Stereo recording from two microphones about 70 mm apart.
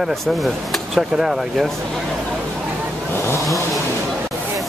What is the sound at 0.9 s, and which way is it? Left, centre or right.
Speech, centre.